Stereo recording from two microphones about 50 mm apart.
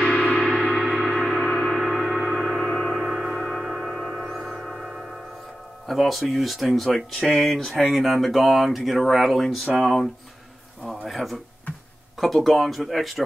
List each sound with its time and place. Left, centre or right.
0.2 s gong: centre
0.5 s gong: centre
3.3 s gong: centre
3.8 s music: centre
4.5 s a sound: centre
5.9 s speech: centre
11.1 s speech: centre